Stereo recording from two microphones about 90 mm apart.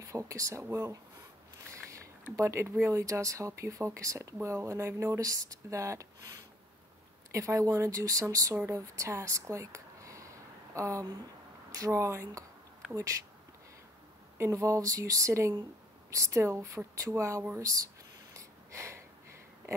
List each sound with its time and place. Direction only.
0.0 s speech: 35° right (ahead or behind)
1.7 s a sound: 35° right (ahead or behind)
2.3 s speech: 30° right (ahead or behind)
7.3 s speech: 35° right (ahead or behind)
10.7 s a sound: 35° right (ahead or behind)
11.7 s speech: 35° right (ahead or behind)
12.8 s a sound: 10° right (ahead or behind)
14.4 s speech: 35° right (ahead or behind)
18.3 s snort: 35° right (ahead or behind)